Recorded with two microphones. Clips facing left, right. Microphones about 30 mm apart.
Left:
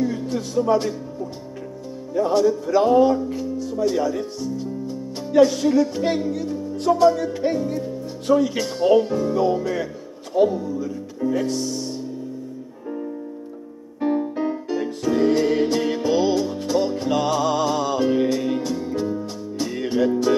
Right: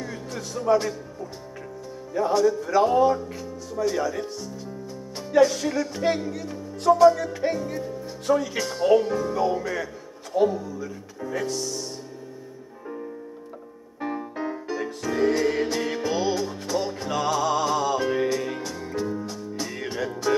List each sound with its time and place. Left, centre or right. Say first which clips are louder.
0.0 s music: left 9 dB; centre
2.3 s speech: left 2 dB; centre
3.3 s music: left 9 dB; centre
3.9 s speech: left 4 dB; centre
5.6 s speech: left 7 dB; centre
10.9 s music: left 8 dB; centre
11.4 s speech: left 4 dB; centre
14.0 s music: left 8 dB; centre